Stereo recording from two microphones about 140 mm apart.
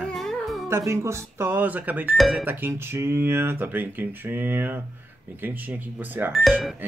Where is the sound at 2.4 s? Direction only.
15° right (ahead or behind).